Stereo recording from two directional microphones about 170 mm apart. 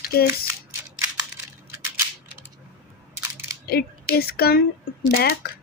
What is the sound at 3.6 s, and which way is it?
Speech, 65° left (ahead or behind).